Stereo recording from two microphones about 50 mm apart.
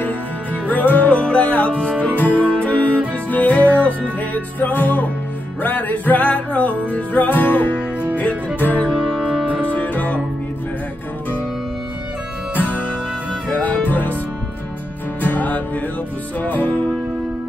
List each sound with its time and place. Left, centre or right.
0.7 s music: left
2.0 s music: left
9.2 s music: centre
9.7 s music: left
12.5 s music: left
15.2 s music: left